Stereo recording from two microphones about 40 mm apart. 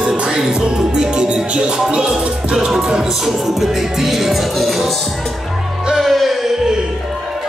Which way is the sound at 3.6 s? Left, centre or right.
Centre.